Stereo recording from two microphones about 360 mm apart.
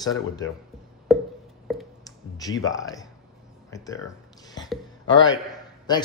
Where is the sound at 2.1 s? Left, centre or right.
Centre.